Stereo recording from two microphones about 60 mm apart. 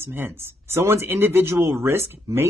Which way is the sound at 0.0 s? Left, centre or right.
Right.